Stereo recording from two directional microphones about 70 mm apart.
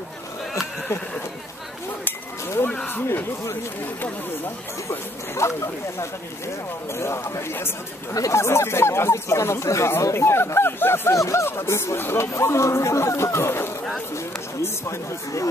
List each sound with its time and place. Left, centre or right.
2.9 s speech: left
4.8 s speech: left
8.1 s speech: left
11.1 s speech: left
11.4 s speech: left